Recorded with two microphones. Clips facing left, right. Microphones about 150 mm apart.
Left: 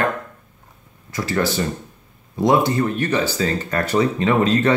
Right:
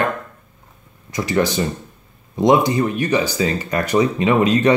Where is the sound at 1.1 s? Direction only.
15° right (ahead or behind).